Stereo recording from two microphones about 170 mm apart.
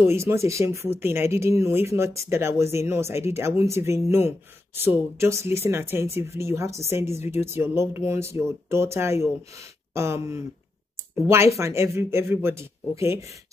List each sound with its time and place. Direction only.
0.0 s speech: 15° right (ahead or behind)